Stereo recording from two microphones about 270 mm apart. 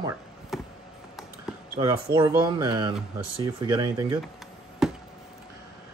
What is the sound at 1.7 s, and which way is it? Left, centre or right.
Speech, centre.